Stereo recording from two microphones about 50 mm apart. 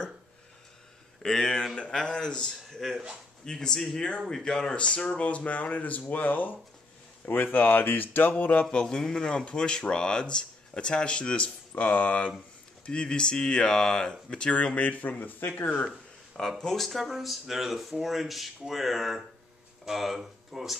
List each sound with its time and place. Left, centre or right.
1.2 s speech: centre; by 6.5 s left
7.5 s a sound: left
8.8 s speech: centre
11.7 s a sound: left
12.8 s speech: centre
16.3 s speech: centre